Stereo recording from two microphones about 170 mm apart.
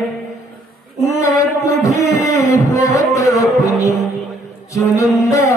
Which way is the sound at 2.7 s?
20° left (ahead or behind).